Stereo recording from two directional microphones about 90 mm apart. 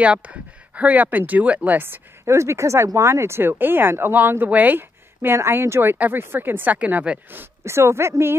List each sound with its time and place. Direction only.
0.0 s speech: 15° right (ahead or behind)